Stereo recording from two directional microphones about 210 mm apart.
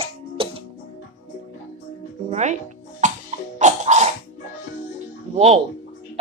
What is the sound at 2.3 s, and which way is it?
Music, 35° right (ahead or behind).